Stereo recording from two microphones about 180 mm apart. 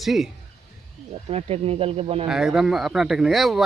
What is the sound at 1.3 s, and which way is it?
Speech, 35° right (ahead or behind).